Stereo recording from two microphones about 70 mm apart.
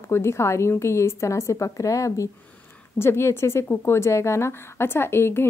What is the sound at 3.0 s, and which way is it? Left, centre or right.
A woman's voice, left.